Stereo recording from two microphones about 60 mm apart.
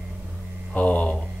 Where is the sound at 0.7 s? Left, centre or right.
Left.